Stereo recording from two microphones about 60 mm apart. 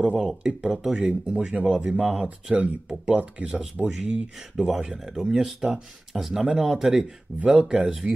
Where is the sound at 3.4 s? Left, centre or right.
Centre.